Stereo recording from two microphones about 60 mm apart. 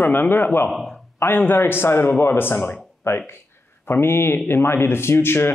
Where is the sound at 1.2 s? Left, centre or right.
Left.